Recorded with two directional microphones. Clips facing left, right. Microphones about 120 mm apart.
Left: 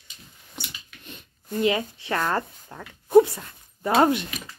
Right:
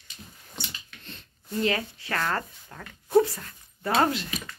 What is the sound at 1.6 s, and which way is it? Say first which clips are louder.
Speech: left 5 dB; 20° left (ahead or behind).